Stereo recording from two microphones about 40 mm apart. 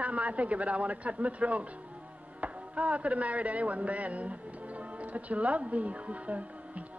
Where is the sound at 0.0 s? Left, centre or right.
Right.